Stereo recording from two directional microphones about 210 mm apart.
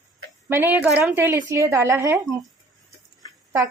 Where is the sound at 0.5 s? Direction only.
10° right (ahead or behind).